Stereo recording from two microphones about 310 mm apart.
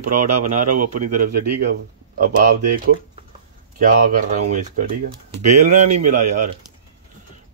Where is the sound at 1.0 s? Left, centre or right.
Right.